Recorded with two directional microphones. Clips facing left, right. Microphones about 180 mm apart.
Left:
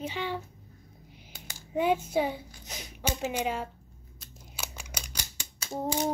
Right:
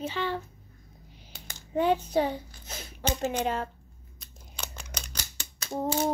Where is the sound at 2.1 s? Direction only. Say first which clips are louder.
Right 2 dB; 10° left (ahead or behind).